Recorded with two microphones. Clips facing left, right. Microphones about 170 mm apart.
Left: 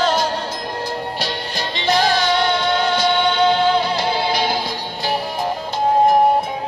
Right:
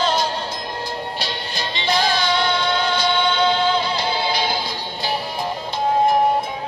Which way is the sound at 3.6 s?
55° left (ahead or behind).